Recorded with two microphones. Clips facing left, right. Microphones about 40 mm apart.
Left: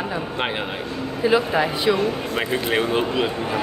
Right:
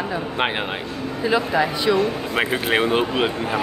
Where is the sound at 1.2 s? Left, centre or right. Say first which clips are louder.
Left 1 dB; centre.